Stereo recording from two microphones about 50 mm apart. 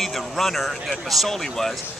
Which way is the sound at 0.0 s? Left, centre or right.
Centre.